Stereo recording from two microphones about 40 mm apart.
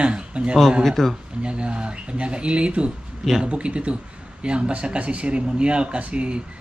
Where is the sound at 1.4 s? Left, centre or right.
Right.